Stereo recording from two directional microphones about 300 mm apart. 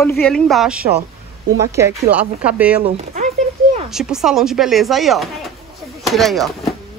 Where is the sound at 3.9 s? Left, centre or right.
Centre.